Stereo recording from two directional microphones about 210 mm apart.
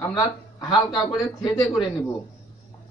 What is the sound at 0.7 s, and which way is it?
Speech, 25° left (ahead or behind).